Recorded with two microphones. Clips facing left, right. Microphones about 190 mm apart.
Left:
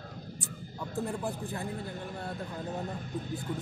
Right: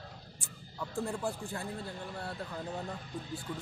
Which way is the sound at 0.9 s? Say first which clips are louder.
Left 1 dB; 20° left (ahead or behind).